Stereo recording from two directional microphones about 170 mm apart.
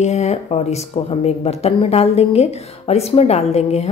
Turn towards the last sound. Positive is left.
turn(degrees=40)  # may be behind; listen again after turning